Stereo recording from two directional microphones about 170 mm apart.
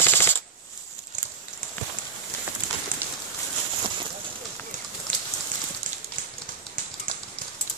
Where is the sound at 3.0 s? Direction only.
15° right (ahead or behind).